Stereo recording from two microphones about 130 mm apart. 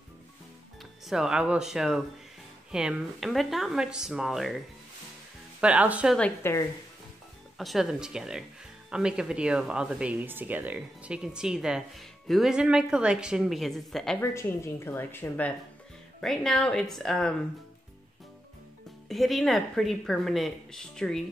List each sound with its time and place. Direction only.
1.0 s a woman's voice: 5° right (ahead or behind)
5.6 s speech: 10° right (ahead or behind)
6.4 s speech: 25° left (ahead or behind)
7.5 s a woman's voice: centre (ahead or behind)
14.2 s speech: 20° left (ahead or behind)
16.2 s a woman's voice: 5° left (ahead or behind)
19.0 s a woman's voice: centre (ahead or behind)